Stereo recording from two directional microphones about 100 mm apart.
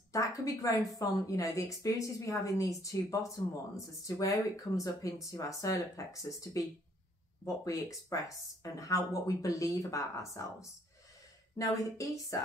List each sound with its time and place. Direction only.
0.1 s a woman's voice: 35° left (ahead or behind)